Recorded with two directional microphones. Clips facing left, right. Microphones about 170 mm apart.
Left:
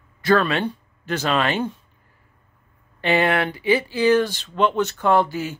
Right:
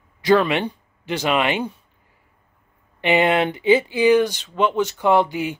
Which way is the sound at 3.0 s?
20° right (ahead or behind).